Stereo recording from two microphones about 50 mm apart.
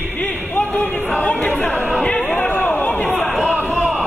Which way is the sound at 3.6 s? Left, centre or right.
Centre.